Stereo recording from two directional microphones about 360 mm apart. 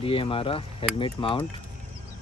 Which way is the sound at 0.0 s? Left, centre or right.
Centre.